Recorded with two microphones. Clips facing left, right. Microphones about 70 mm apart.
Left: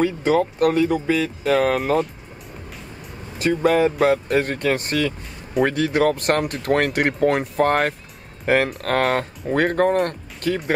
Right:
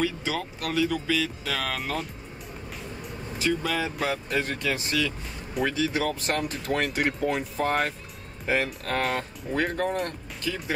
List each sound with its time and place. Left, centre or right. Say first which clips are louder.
0.0 s speech: left 10 dB; left
3.3 s speech: left 9 dB; left